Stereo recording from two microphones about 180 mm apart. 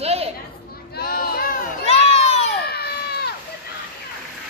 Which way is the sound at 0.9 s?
55° left (ahead or behind).